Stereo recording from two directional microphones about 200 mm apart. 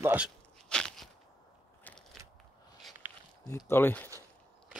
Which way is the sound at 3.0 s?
10° right (ahead or behind).